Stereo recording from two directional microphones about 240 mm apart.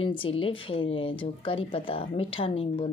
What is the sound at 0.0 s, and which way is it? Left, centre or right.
Speech, left.